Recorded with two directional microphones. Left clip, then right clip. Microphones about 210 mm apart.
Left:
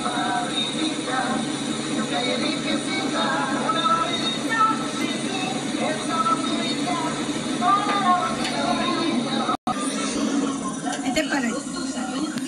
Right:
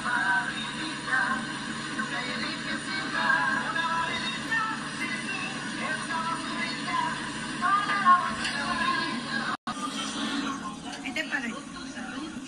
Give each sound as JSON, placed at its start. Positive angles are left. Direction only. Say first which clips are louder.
{"t": 2.7, "sound": "music", "louder": "left 6 dB", "side_deg": 45}
{"t": 6.1, "sound": "music", "louder": "left 12 dB", "side_deg": 45}
{"t": 7.6, "sound": "music", "louder": "left 3 dB", "side_deg": 45}